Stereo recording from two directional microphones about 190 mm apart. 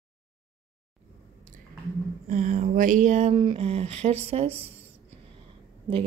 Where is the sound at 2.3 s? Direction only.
40° right (ahead or behind).